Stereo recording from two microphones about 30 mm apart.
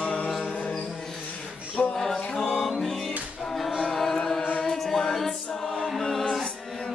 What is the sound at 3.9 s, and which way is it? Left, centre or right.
Chant, centre.